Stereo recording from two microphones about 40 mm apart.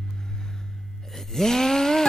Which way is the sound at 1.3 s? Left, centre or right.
Centre.